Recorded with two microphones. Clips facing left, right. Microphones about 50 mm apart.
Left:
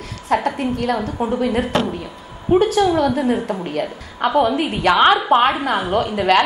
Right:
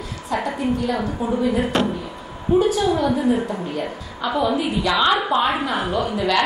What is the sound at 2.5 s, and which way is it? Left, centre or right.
A woman's voice, left.